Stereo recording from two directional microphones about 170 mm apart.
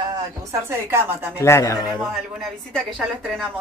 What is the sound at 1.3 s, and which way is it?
Speech, 15° left (ahead or behind).